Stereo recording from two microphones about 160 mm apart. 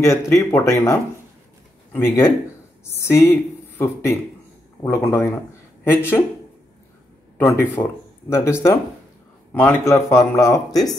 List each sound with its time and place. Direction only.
0.0 s speech: 20° left (ahead or behind)
7.3 s speech: 15° left (ahead or behind)